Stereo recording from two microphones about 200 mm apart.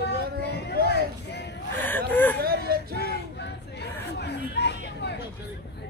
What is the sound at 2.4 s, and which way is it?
Whimper, 50° right (ahead or behind).